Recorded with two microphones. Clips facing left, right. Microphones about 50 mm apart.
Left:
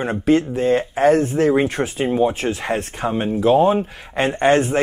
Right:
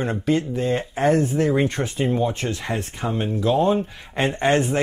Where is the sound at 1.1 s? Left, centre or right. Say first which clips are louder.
Left 3 dB; left.